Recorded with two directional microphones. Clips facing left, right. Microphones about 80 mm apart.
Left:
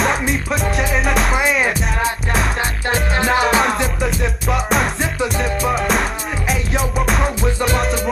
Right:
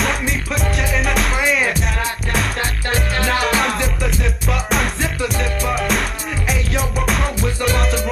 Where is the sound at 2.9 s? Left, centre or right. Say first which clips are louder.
Left 3 dB; left.